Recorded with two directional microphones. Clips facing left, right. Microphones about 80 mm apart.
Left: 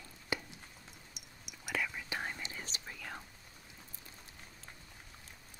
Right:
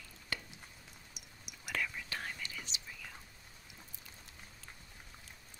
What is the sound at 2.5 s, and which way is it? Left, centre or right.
Whispering, left.